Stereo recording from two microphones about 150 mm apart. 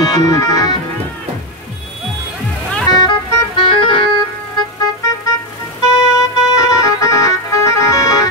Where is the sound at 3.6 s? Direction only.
35° left (ahead or behind).